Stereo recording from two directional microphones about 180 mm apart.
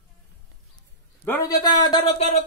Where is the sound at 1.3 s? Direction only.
20° left (ahead or behind).